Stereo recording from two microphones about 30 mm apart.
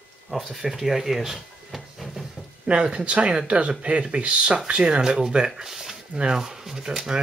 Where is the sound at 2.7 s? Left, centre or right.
Right.